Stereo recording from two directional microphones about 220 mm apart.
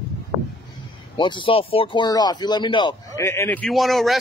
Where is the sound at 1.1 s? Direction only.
20° left (ahead or behind); by 4.2 s centre (ahead or behind).